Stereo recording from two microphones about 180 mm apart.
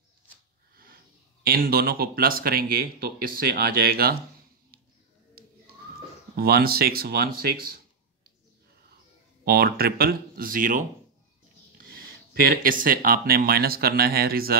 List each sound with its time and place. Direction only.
1.4 s speech: 55° right (ahead or behind)
5.4 s whistling: 55° right (ahead or behind)
6.3 s speech: 60° right (ahead or behind)
9.4 s speech: 60° right (ahead or behind)